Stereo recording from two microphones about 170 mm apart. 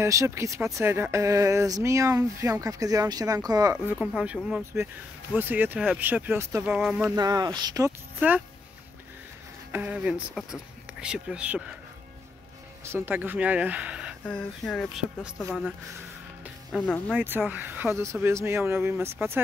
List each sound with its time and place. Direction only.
0.0 s speech: 15° right (ahead or behind)
3.9 s speech: 5° right (ahead or behind)
7.2 s speech: 20° right (ahead or behind)
9.7 s speech: 10° right (ahead or behind)
12.8 s speech: 15° right (ahead or behind)
14.2 s speech: 5° left (ahead or behind)
16.7 s speech: 5° left (ahead or behind)
17.2 s speech: 10° right (ahead or behind)